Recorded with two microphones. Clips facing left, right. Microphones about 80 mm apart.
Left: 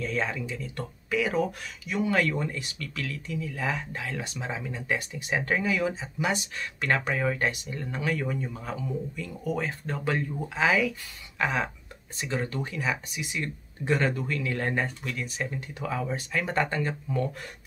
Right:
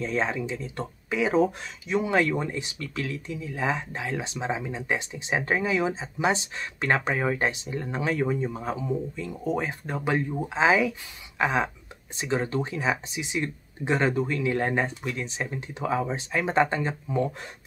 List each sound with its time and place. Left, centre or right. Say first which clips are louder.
0.0 s speech: right 3 dB; right